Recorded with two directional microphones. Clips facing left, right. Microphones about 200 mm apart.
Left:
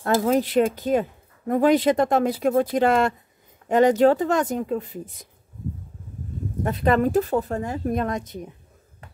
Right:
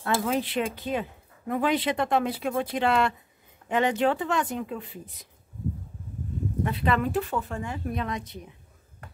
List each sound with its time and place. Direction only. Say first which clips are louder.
0.0 s a woman's voice: left 6 dB; 40° left (ahead or behind)
6.6 s a woman's voice: left 6 dB; 45° left (ahead or behind)